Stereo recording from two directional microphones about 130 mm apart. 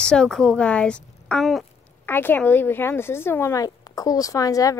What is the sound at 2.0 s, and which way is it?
Speech, 15° left (ahead or behind).